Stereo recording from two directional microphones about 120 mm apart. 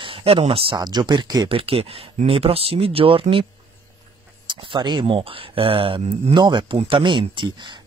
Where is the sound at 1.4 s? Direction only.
50° right (ahead or behind).